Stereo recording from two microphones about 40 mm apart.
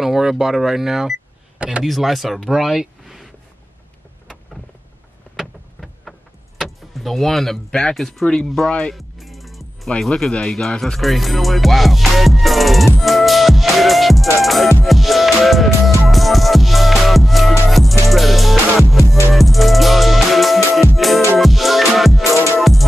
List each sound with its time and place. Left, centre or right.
0.0 s speech: centre
6.1 s vehicle: right
7.0 s speech: centre
8.9 s music: centre
10.0 s speech: centre
11.0 s music: centre